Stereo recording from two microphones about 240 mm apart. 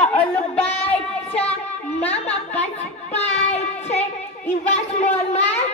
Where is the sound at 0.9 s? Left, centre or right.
Centre.